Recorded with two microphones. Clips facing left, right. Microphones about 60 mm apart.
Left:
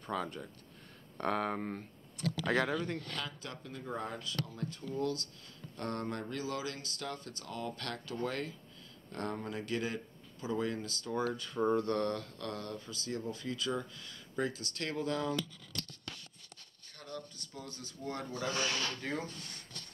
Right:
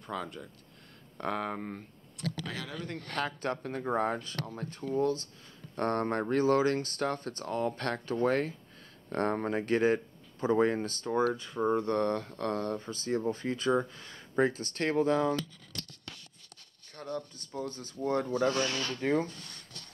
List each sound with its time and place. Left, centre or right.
0.0 s speech: centre
2.4 s speech: left
3.0 s speech: right
5.8 s speech: right
16.9 s speech: right
18.4 s speech: centre
18.9 s speech: right